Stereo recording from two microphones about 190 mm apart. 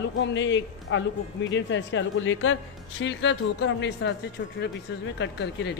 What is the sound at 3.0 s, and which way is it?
A woman's voice, 70° left (ahead or behind).